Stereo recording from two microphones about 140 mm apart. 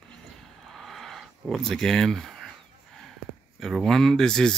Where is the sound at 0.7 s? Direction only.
Centre (ahead or behind).